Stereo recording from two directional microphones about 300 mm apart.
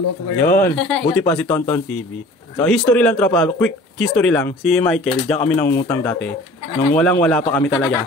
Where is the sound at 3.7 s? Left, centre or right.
Left.